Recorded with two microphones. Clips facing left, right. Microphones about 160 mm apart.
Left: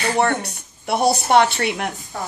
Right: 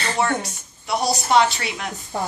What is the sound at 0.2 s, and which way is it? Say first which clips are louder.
Speech: left 2 dB; 60° left (ahead or behind).